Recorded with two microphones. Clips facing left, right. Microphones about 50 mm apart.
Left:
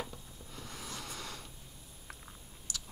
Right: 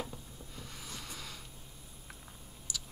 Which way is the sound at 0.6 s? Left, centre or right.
Centre.